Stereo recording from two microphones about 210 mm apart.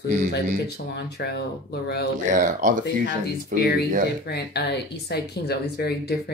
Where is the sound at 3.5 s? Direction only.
50° left (ahead or behind).